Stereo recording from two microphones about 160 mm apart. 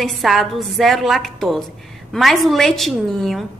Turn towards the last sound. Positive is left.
turn(degrees=0)  # may be behind; listen again after turning